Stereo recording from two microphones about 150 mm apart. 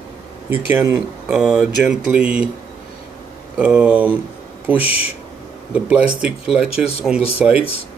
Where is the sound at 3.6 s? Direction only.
10° right (ahead or behind).